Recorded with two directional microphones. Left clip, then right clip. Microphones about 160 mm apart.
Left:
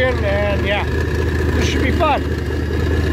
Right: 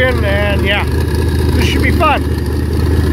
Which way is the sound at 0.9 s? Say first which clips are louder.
Right 2 dB; 70° right (ahead or behind).